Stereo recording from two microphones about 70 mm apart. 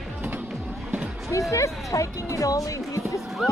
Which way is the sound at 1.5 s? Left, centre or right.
Left.